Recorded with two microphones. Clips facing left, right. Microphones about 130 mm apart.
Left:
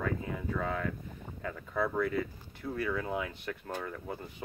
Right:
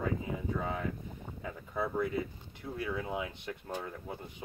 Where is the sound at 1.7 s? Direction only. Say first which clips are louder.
Left 2 dB; 20° right (ahead or behind).